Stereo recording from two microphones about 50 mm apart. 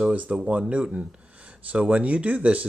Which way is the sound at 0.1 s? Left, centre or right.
Right.